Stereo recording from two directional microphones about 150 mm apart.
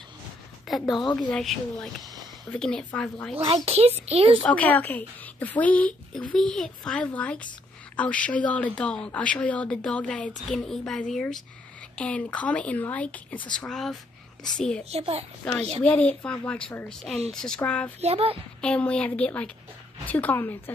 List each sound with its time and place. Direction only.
0.7 s speech: centre (ahead or behind)
3.3 s speech: 40° right (ahead or behind)
4.4 s speech: 10° left (ahead or behind)
14.9 s speech: 45° right (ahead or behind)
15.4 s speech: 5° left (ahead or behind)
18.0 s speech: 40° right (ahead or behind)
18.6 s speech: 5° left (ahead or behind)